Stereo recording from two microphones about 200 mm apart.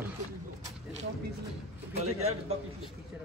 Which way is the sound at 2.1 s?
90° right.